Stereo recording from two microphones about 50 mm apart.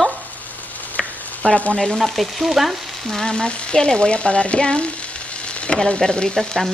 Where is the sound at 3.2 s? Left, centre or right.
Centre.